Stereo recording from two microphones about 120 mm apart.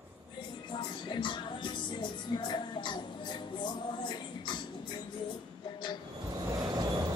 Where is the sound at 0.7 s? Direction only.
40° left (ahead or behind).